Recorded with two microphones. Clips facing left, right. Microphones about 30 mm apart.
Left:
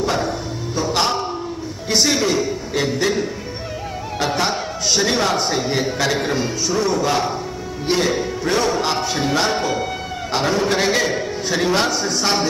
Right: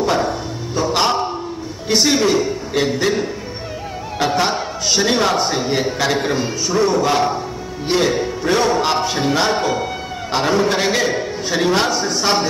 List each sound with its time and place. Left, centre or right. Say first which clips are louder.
0.0 s music: right 3 dB; centre
1.9 s a man's voice: right 3 dB; centre